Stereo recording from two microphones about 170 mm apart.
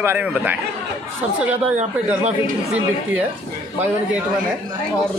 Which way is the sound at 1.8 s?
45° right (ahead or behind).